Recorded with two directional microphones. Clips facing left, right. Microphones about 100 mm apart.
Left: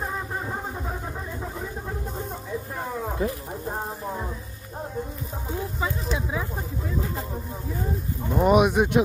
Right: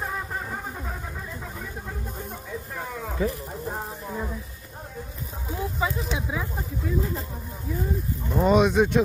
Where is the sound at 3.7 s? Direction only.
30° left (ahead or behind).